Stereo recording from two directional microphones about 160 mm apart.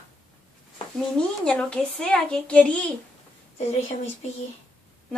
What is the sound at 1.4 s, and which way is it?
A woman's voice, 5° left (ahead or behind).